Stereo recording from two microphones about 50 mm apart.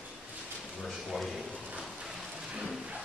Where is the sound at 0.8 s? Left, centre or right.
Centre.